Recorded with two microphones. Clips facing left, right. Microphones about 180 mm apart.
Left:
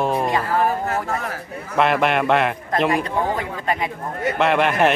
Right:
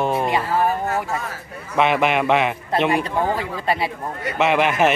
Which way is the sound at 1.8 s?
Centre (ahead or behind).